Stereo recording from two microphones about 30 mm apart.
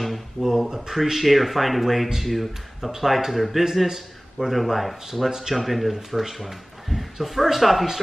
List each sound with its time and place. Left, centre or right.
0.0 s speech: centre
0.7 s a man's voice: centre
5.9 s speech: centre
6.3 s a man's voice: centre